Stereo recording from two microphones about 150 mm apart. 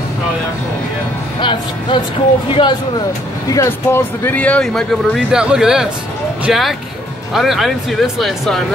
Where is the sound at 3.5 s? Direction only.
20° left (ahead or behind); by 8.6 s centre (ahead or behind).